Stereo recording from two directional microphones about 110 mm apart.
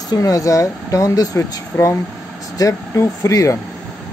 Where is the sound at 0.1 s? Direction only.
30° left (ahead or behind).